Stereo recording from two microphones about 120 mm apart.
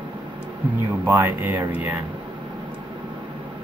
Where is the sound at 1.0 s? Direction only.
20° right (ahead or behind).